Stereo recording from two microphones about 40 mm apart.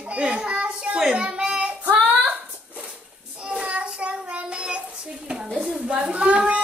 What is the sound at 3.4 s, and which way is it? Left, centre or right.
Child singing, right.